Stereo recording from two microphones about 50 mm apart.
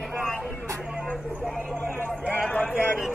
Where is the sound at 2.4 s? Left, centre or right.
Left.